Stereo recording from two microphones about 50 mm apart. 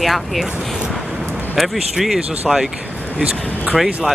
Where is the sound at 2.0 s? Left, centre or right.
Centre.